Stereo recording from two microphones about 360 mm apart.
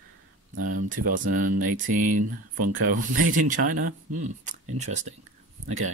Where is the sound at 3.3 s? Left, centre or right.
Right.